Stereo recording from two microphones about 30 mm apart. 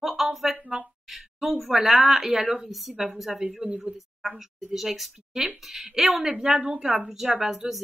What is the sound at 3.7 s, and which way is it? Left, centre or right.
Speech, right.